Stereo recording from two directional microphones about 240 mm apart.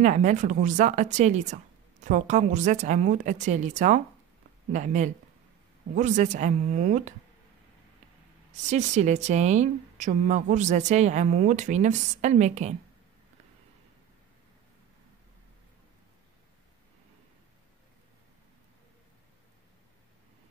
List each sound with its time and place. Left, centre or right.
0.0 s speech: right
8.6 s speech: right